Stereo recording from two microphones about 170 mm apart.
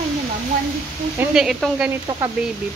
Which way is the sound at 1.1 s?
Centre (ahead or behind).